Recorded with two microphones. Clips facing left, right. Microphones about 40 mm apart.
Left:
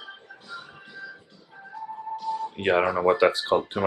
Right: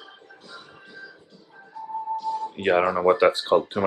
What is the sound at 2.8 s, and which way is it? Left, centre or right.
Speech, centre.